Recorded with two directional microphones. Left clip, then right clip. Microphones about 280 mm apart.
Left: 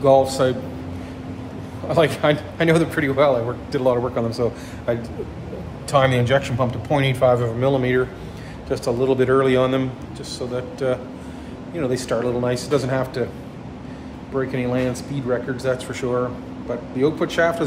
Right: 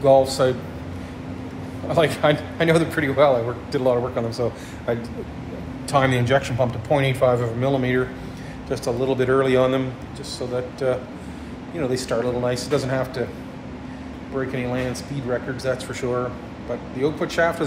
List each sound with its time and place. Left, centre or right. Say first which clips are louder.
0.4 s speech: even; centre
1.9 s a man's voice: left 1 dB; centre
14.3 s a man's voice: left 3 dB; centre